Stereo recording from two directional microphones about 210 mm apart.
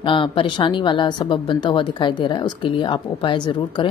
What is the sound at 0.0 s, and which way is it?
A woman's voice, 25° left (ahead or behind).